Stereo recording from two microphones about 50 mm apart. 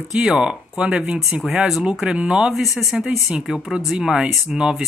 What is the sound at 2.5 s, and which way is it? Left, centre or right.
Speech, centre.